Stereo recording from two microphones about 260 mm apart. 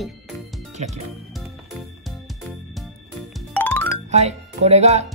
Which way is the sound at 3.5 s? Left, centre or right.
Centre.